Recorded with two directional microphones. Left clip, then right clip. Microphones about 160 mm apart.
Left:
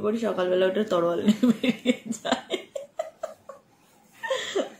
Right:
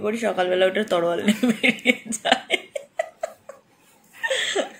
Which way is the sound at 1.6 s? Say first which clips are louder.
Right 7 dB; 25° left (ahead or behind).